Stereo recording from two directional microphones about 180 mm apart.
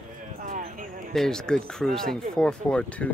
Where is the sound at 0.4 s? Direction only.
50° right (ahead or behind).